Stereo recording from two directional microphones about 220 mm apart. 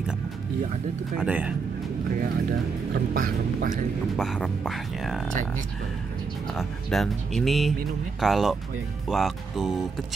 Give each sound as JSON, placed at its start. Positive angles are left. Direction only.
{"t": 1.1, "sound": "speech", "side_deg": -5}
{"t": 2.9, "sound": "speech", "side_deg": -40}
{"t": 4.2, "sound": "speech", "side_deg": 0}
{"t": 6.9, "sound": "speech", "side_deg": 0}